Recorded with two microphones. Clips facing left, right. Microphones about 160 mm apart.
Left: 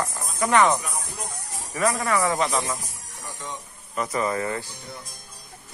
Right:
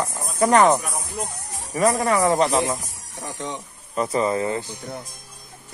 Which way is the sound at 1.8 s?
30° right (ahead or behind).